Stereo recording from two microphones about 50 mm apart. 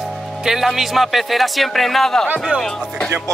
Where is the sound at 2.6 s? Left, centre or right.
Centre.